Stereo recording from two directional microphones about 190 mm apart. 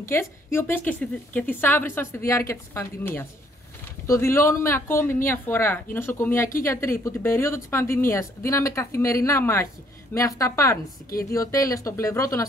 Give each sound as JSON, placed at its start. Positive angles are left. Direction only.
{"t": 0.0, "sound": "speech", "side_deg": 15}